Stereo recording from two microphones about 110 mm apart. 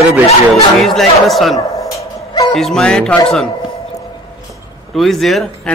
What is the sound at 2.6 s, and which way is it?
Speech, centre (ahead or behind).